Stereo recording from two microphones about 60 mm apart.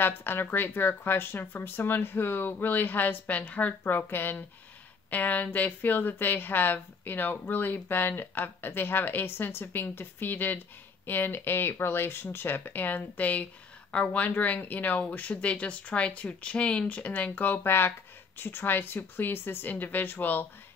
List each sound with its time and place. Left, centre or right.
0.0 s speech: left